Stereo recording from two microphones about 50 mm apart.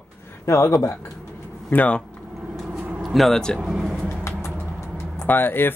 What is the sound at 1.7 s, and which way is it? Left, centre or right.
Speech, left.